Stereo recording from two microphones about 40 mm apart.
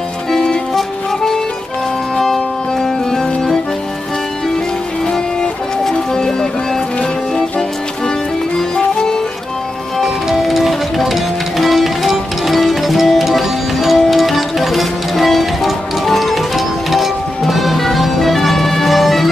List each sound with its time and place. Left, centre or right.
0.3 s music: centre
5.0 s music: centre
8.5 s music: centre
10.4 s music: centre